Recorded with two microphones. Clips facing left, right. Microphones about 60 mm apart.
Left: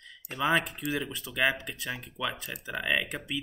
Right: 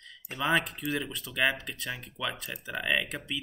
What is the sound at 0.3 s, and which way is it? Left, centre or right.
Speech, centre.